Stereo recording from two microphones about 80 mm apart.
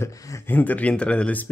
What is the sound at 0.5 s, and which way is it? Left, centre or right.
Speech, left.